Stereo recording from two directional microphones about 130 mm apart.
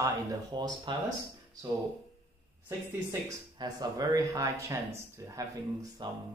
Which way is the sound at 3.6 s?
30° right (ahead or behind).